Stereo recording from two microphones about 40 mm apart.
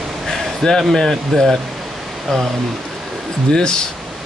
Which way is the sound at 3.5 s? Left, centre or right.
Left.